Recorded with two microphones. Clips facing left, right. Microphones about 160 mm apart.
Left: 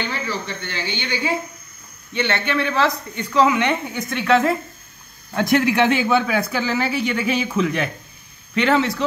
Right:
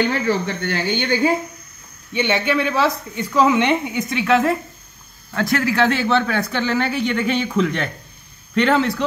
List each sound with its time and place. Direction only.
0.0 s speech: 50° right (ahead or behind)
2.1 s speech: 10° right (ahead or behind)
4.1 s speech: 5° right (ahead or behind)
5.3 s speech: 20° left (ahead or behind); by 9.0 s centre (ahead or behind)